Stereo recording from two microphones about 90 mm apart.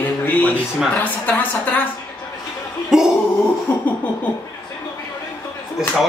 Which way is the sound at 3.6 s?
20° left (ahead or behind).